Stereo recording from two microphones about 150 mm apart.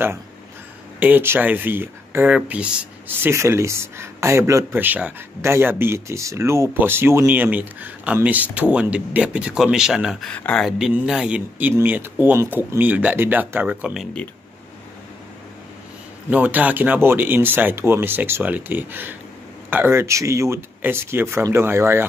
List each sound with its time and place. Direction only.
0.9 s speech: 10° right (ahead or behind)
10.3 s speech: 10° left (ahead or behind)
16.3 s speech: 10° right (ahead or behind)